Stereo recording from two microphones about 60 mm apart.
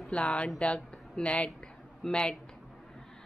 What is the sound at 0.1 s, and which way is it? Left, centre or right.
A woman's voice, centre.